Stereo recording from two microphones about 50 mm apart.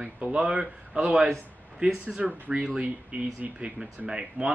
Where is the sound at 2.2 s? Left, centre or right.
Right.